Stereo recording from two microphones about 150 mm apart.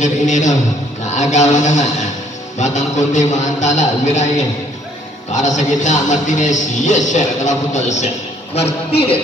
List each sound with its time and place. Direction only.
0.0 s speech: 55° left (ahead or behind)
5.3 s speech: 55° left (ahead or behind)